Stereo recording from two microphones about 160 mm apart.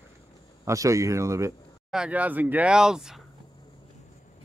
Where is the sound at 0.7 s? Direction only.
20° right (ahead or behind).